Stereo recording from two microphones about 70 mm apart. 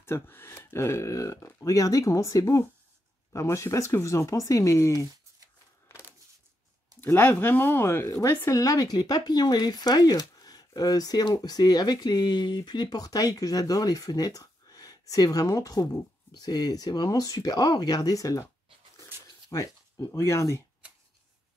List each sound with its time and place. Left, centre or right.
0.0 s speech: left
5.9 s a sound: left
7.0 s speech: left
8.5 s speech: left
16.3 s speech: left
19.5 s a sound: left
20.1 s speech: left